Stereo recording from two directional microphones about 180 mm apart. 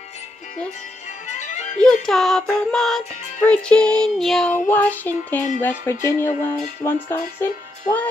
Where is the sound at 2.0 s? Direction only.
Centre (ahead or behind).